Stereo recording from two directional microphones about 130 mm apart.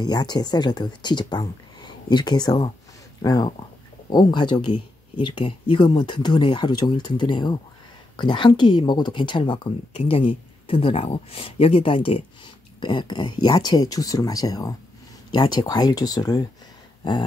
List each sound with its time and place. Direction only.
0.0 s speech: 30° left (ahead or behind)